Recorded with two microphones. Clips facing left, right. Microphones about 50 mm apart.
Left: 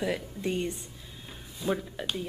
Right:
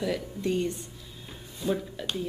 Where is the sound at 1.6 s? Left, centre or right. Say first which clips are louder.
Right 1 dB; centre.